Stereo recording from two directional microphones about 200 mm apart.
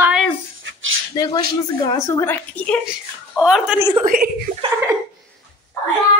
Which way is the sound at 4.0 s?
45° right (ahead or behind).